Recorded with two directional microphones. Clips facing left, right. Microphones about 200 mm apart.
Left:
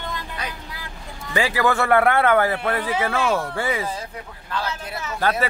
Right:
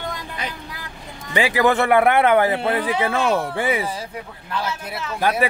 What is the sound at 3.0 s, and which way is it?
A man's voice, 20° right (ahead or behind).